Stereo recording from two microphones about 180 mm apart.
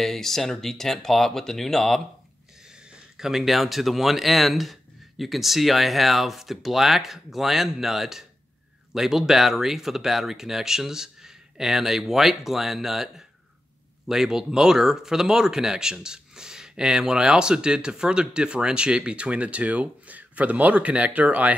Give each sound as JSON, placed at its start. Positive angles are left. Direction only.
{"t": 0.0, "sound": "speech", "side_deg": 0}